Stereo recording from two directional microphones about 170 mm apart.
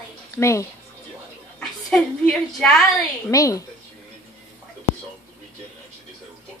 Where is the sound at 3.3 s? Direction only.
20° left (ahead or behind).